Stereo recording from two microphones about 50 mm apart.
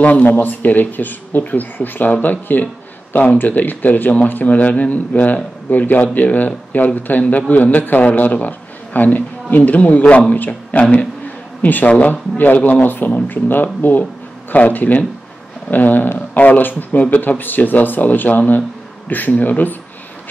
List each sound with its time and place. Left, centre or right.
0.0 s a man's voice: left
12.1 s speech: left
12.5 s a man's voice: left
12.8 s speech: left